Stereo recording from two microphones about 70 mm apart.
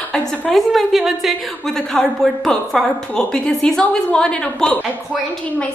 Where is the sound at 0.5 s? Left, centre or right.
Centre.